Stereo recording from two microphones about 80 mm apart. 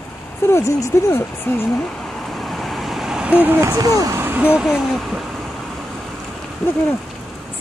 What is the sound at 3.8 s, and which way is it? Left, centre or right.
Speech, right.